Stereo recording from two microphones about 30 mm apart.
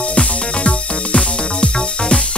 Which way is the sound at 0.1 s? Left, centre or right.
Left.